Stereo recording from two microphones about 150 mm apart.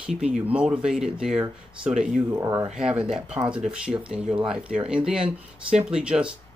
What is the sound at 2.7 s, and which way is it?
Speech, 5° right (ahead or behind).